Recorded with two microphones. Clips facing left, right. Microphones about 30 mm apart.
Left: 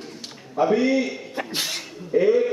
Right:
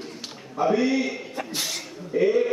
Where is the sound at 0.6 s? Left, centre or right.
Centre.